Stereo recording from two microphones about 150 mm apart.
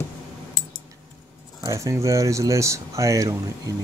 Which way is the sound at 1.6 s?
20° right (ahead or behind).